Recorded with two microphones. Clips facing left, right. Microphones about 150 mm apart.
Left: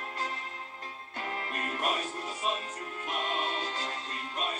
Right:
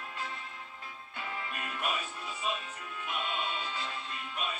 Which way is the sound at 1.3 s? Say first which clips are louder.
Left 4 dB; 45° left (ahead or behind).